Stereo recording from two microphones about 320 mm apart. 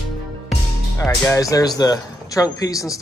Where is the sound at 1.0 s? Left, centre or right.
Centre.